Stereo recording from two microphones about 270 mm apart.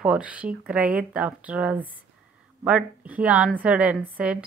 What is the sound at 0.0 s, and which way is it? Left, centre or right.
Speech, centre.